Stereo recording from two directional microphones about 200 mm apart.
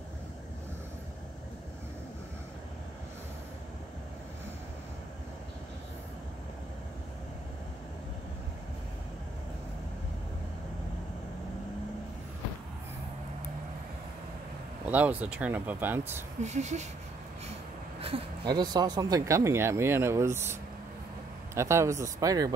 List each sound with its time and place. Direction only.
14.9 s speech: 10° right (ahead or behind)
16.4 s speech: 35° right (ahead or behind)
18.0 s speech: 25° right (ahead or behind)
21.5 s speech: 15° right (ahead or behind)